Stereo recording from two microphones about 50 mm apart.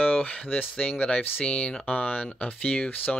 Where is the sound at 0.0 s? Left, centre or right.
Left.